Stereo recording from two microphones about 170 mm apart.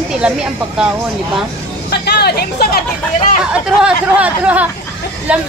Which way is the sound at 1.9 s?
75° left (ahead or behind).